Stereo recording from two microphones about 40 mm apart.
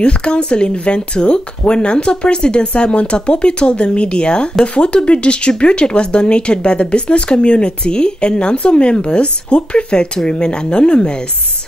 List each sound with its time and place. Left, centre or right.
0.0 s speech: left